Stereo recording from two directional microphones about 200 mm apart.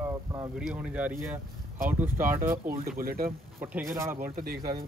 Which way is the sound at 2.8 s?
50° right (ahead or behind).